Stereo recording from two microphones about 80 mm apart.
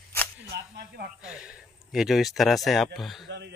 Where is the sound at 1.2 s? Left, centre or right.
Centre.